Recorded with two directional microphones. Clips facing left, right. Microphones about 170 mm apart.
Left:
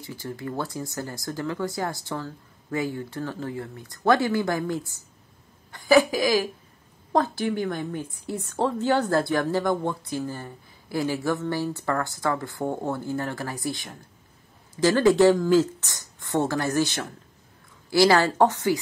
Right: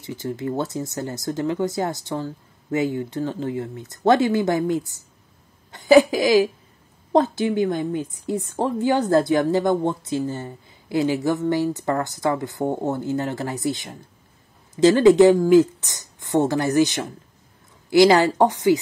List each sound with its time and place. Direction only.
0.0 s a woman's voice: 20° right (ahead or behind)